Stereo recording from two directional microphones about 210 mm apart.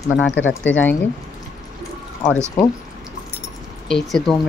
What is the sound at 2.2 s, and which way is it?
Speech, 25° left (ahead or behind).